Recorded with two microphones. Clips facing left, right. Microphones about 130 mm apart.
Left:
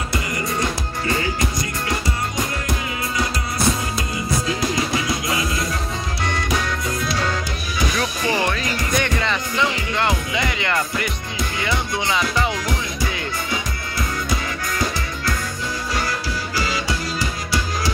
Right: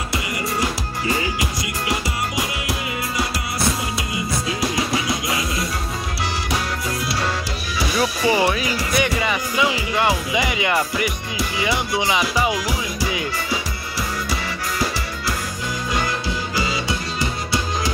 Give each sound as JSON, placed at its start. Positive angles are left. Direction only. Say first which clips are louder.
{"t": 0.1, "sound": "music", "louder": "even", "side_deg": -10}
{"t": 6.9, "sound": "music", "louder": "even", "side_deg": -5}
{"t": 16.5, "sound": "music", "louder": "left 1 dB", "side_deg": -25}